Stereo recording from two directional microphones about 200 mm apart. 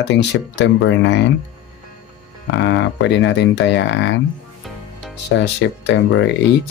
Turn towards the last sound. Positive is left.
turn(degrees=65)  # may be behind; listen again after turning